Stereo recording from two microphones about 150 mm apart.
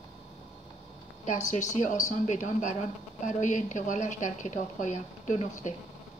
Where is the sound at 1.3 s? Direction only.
55° left (ahead or behind).